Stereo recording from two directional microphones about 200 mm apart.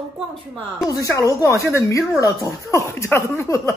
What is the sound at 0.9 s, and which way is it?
Speech, 15° left (ahead or behind).